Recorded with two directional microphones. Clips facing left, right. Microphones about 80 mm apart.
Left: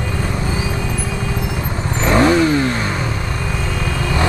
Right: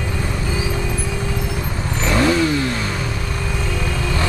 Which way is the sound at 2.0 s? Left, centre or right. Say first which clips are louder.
Left 4 dB; left.